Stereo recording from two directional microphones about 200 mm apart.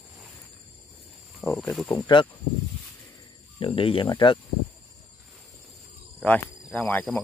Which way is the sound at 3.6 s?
25° left (ahead or behind).